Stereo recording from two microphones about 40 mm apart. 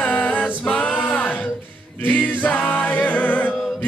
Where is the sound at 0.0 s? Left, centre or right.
Left.